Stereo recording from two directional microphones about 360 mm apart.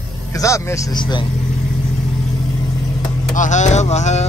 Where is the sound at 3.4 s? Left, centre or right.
Centre.